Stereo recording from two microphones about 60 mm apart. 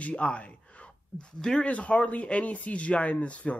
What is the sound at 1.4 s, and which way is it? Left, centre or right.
Speech, centre.